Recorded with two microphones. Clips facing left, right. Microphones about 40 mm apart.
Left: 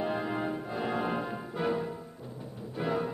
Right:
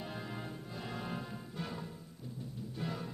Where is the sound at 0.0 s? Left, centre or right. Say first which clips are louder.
Left 12 dB; left.